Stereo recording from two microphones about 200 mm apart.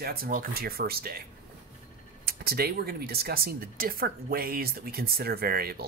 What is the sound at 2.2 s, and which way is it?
Speech, 50° right (ahead or behind).